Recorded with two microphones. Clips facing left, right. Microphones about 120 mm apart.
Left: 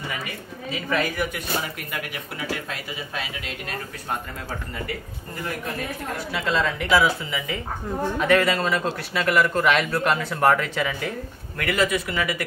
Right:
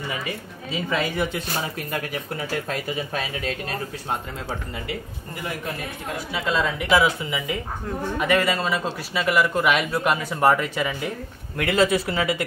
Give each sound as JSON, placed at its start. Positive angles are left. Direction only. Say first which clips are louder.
{"t": 0.8, "sound": "speech", "louder": "even", "side_deg": -25}
{"t": 6.1, "sound": "a man's voice", "louder": "even", "side_deg": -5}
{"t": 6.9, "sound": "a man's voice", "louder": "right 1 dB", "side_deg": -15}
{"t": 11.5, "sound": "speech", "louder": "right 3 dB", "side_deg": -25}